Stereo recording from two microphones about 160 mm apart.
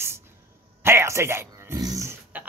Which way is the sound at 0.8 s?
15° right (ahead or behind).